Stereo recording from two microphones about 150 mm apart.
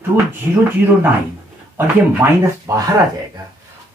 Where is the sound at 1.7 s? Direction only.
20° right (ahead or behind).